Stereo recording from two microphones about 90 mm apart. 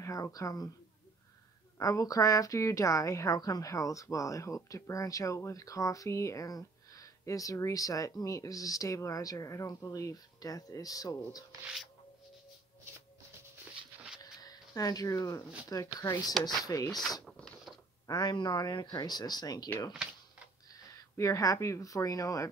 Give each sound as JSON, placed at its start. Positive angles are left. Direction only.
{"t": 0.0, "sound": "speech", "side_deg": 40}
{"t": 1.8, "sound": "speech", "side_deg": 40}
{"t": 14.2, "sound": "speech", "side_deg": 45}
{"t": 17.2, "sound": "a sound", "side_deg": 5}
{"t": 18.0, "sound": "speech", "side_deg": 50}
{"t": 20.0, "sound": "a sound", "side_deg": -10}
{"t": 20.9, "sound": "speech", "side_deg": 35}